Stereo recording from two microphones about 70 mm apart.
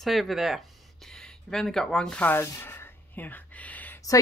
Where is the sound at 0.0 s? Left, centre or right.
Centre.